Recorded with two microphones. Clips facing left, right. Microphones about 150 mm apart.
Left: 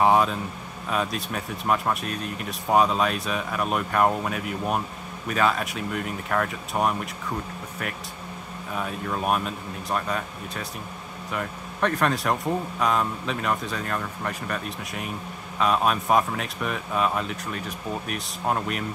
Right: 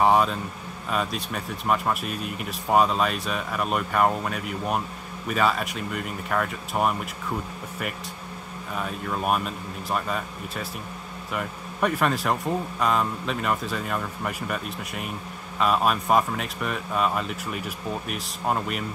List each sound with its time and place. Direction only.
0.0 s speech: centre (ahead or behind)
8.7 s speech: centre (ahead or behind)